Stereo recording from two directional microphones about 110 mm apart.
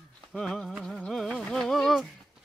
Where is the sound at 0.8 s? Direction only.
5° left (ahead or behind).